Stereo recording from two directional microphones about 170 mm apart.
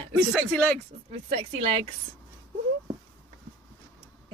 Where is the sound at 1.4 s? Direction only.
35° right (ahead or behind).